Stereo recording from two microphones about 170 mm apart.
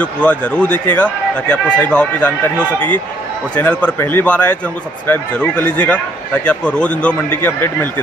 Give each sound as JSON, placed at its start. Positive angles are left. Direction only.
{"t": 0.0, "sound": "speech", "side_deg": 10}
{"t": 3.5, "sound": "speech", "side_deg": 10}